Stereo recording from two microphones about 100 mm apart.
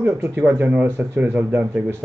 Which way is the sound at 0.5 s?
15° right (ahead or behind).